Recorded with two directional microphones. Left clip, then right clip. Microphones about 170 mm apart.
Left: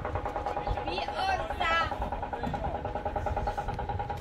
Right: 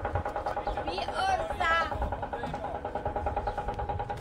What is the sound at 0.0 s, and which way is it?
Vehicle, 45° left (ahead or behind).